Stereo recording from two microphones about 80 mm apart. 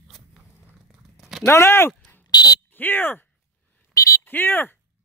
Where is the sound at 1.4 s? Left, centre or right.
Left.